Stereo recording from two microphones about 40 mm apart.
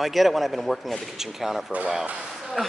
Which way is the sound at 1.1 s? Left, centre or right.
Centre.